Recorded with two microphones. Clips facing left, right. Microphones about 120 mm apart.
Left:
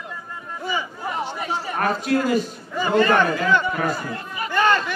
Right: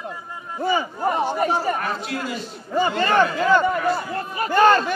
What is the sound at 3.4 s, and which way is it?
Speech, 40° right (ahead or behind).